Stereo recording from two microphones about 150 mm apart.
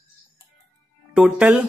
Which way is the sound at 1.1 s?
5° right (ahead or behind).